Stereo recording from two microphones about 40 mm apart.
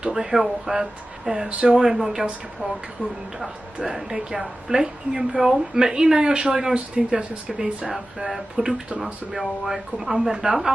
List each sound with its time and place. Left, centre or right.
0.1 s a woman's voice: centre
3.3 s a woman's voice: centre